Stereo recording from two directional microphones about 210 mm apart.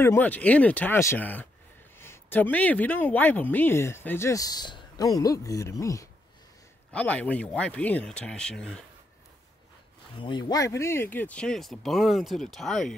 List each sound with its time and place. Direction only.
0.0 s speech: 10° left (ahead or behind)
10.1 s speech: 20° left (ahead or behind); by 12.9 s centre (ahead or behind)